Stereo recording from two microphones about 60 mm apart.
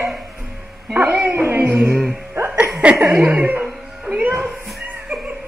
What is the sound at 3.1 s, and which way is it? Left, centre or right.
Music, right.